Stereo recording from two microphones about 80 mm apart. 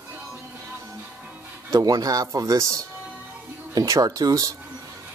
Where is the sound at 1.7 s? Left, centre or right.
Right.